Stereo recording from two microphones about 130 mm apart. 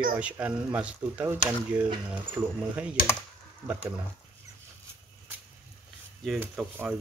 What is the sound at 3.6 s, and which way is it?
Speech, 15° right (ahead or behind).